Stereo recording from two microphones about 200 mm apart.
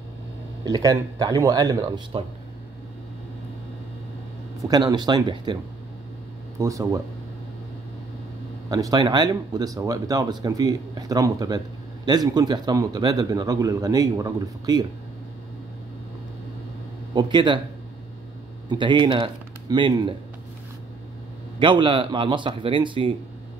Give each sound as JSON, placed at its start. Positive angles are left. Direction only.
{"t": 0.7, "sound": "speech", "side_deg": -20}
{"t": 4.6, "sound": "speech", "side_deg": -20}
{"t": 6.6, "sound": "speech", "side_deg": -15}
{"t": 8.6, "sound": "speech", "side_deg": -20}
{"t": 17.1, "sound": "speech", "side_deg": -25}
{"t": 18.7, "sound": "speech", "side_deg": -25}
{"t": 21.5, "sound": "speech", "side_deg": -25}